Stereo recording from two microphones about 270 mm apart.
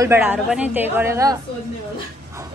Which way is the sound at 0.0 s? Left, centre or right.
Centre.